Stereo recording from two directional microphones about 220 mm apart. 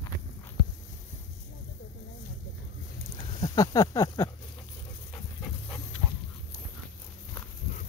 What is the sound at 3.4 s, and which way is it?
Speech, 15° left (ahead or behind).